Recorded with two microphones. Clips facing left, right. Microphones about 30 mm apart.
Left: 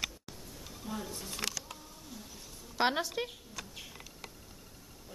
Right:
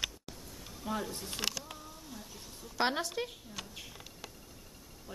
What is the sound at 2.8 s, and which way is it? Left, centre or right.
Speech, centre.